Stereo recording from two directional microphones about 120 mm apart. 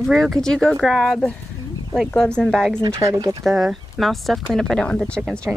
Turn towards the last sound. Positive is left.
turn(degrees=10)  # may be behind; listen again after turning